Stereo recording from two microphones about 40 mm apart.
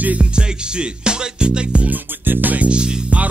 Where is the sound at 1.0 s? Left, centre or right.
Right.